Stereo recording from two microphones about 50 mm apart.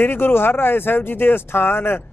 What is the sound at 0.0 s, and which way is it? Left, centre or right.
Speech, left.